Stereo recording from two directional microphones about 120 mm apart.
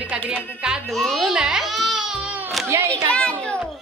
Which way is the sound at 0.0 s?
15° right (ahead or behind).